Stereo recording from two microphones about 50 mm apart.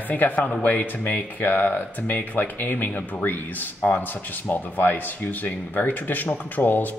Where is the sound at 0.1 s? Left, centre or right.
Left.